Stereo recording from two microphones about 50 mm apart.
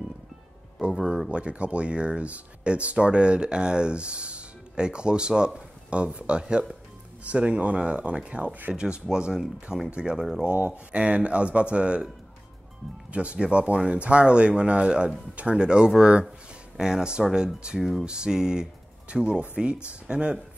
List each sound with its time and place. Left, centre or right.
0.9 s speech: centre
13.1 s speech: right